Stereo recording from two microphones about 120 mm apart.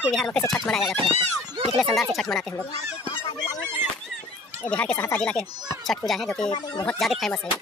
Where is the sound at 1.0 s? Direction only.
50° right (ahead or behind).